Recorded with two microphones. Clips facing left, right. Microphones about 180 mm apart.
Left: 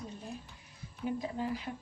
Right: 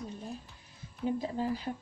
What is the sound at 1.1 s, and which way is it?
Speech, 30° right (ahead or behind).